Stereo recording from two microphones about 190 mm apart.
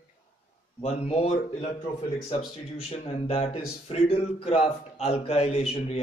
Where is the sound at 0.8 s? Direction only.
30° left (ahead or behind).